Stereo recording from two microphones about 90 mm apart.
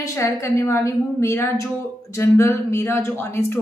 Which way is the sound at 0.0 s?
30° left (ahead or behind).